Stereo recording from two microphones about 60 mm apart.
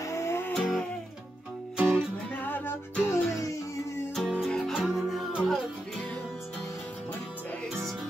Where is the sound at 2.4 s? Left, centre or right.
Left.